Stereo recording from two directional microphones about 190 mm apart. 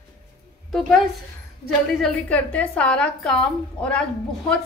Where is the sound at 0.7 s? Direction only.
Centre (ahead or behind).